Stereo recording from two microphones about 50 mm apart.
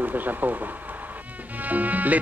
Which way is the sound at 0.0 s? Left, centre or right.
Right.